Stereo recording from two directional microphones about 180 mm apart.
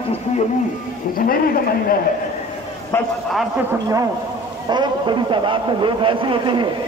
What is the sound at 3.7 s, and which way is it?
A man's voice, 20° right (ahead or behind).